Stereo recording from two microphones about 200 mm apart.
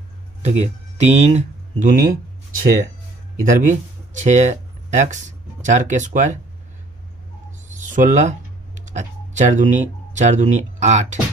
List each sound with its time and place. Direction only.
0.4 s speech: 35° right (ahead or behind)
3.4 s speech: 40° right (ahead or behind)
7.9 s speech: 40° right (ahead or behind)